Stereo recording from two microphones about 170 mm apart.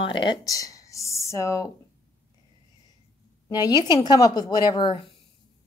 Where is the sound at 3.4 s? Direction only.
25° left (ahead or behind).